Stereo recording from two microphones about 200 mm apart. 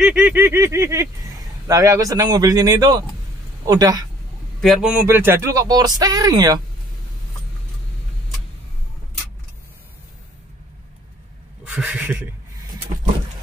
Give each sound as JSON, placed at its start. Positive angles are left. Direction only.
{"t": 0.0, "sound": "speech", "side_deg": -5}
{"t": 4.6, "sound": "a man's voice", "side_deg": 0}
{"t": 5.0, "sound": "speech", "side_deg": -10}
{"t": 11.7, "sound": "speech", "side_deg": -5}